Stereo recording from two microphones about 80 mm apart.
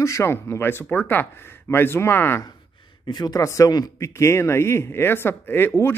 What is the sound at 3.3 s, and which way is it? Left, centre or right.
Speech, left.